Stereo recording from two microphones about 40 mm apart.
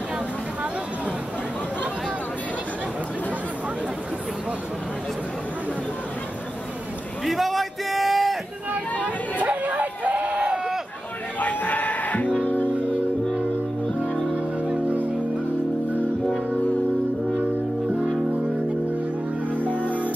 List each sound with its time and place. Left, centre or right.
7.2 s a sound: centre
9.0 s chatter: right
11.3 s music: left
14.3 s music: right
19.5 s music: right
19.8 s music: left